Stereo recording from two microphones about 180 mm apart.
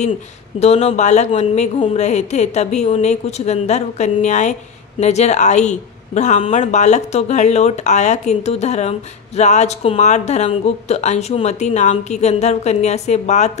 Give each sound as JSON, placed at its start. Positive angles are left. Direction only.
{"t": 0.6, "sound": "speech", "side_deg": 35}